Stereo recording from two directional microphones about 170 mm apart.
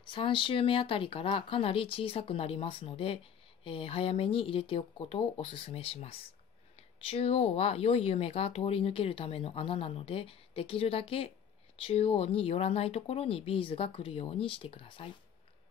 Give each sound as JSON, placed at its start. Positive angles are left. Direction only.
{"t": 0.0, "sound": "speech", "side_deg": 30}